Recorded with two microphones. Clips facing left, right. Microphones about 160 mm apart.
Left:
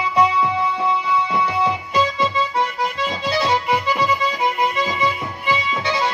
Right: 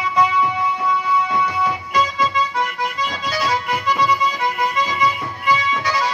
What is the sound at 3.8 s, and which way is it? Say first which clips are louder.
Accordion: right 1 dB; 30° left (ahead or behind).